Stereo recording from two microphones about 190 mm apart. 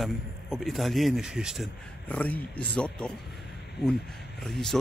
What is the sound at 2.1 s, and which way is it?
Speech, 10° left (ahead or behind).